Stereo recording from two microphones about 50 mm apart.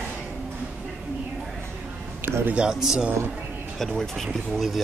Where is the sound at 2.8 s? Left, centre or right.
Centre.